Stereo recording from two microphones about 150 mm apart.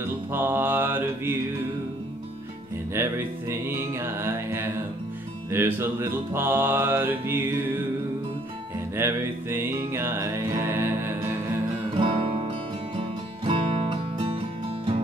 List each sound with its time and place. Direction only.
0.3 s mantra: 15° right (ahead or behind)
2.9 s music: 15° right (ahead or behind)
8.9 s music: 15° right (ahead or behind)
12.0 s music: 40° right (ahead or behind)